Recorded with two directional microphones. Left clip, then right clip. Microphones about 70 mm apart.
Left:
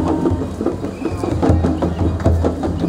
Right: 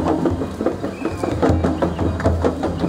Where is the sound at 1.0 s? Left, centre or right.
Right.